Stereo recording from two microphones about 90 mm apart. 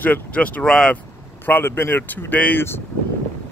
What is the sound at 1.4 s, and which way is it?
Speech, 20° left (ahead or behind).